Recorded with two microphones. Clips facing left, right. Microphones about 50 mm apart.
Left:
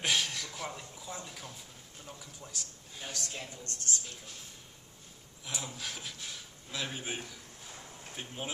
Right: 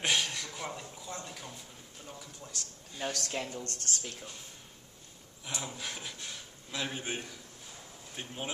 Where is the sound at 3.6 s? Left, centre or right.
Right.